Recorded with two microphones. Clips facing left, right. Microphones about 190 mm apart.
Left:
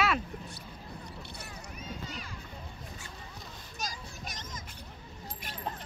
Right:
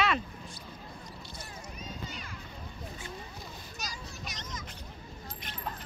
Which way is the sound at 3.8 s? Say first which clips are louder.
Left 3 dB; 50° left (ahead or behind).